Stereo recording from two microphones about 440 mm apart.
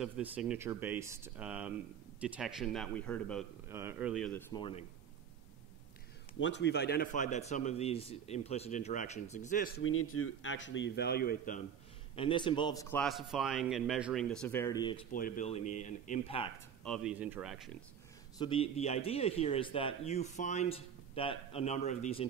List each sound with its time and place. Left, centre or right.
0.0 s a man's voice: centre
6.4 s speech: left
16.8 s a man's voice: centre
18.4 s speech: centre